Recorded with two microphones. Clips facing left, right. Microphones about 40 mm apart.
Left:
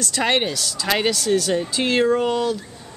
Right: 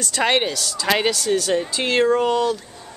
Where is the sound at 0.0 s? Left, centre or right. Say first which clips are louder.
Right 1 dB; centre.